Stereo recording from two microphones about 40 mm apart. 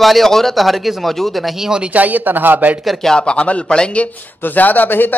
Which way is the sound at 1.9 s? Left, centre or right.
Right.